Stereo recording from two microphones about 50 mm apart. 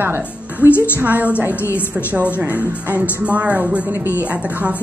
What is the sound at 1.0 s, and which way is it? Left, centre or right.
Speech, right.